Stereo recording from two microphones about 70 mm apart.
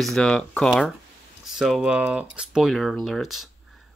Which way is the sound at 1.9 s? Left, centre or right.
Centre.